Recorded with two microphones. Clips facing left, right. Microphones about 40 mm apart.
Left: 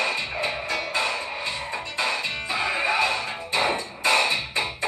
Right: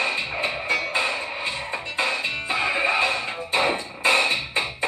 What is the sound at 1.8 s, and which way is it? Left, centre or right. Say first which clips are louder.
Music: right 2 dB; right.